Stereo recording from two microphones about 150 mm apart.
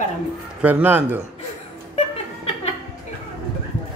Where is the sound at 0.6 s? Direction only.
15° right (ahead or behind).